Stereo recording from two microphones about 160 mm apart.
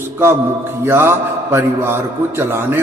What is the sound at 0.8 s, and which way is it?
A man's voice, 15° right (ahead or behind).